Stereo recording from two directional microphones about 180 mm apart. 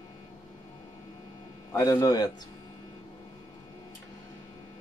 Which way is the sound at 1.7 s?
20° left (ahead or behind).